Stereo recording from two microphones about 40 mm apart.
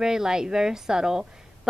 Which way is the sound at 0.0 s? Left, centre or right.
Centre.